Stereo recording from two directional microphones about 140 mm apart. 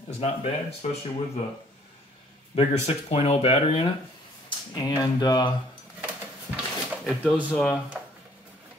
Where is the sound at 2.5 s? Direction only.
55° left (ahead or behind).